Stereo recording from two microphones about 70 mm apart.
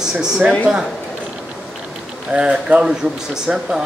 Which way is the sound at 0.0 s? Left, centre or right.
Centre.